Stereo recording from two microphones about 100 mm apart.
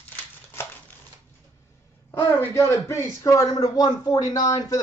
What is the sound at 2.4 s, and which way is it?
A man's voice, 30° left (ahead or behind).